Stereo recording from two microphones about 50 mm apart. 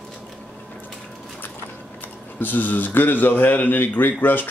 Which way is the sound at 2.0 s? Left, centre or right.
Left.